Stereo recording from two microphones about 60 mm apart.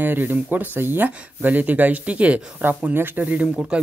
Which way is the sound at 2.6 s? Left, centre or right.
Right.